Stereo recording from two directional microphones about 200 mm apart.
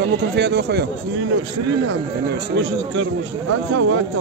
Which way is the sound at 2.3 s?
60° right (ahead or behind).